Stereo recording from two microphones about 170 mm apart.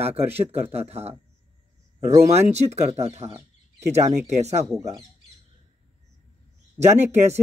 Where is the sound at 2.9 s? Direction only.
40° right (ahead or behind).